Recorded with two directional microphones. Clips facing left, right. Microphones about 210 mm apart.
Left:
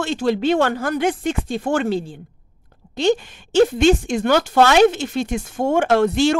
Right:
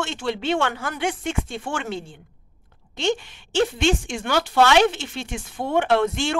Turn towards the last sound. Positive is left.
turn(degrees=35)  # may be behind; listen again after turning